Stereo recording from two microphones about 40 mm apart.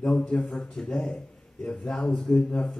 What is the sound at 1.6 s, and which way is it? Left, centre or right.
A man's voice, left.